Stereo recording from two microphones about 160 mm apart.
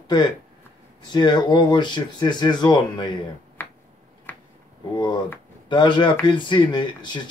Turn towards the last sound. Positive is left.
turn(degrees=30)  # may be behind; listen again after turning